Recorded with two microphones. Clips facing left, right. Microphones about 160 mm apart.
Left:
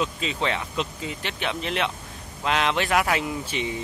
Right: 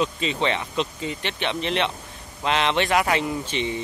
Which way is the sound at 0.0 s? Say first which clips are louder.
Right 3 dB; centre (ahead or behind).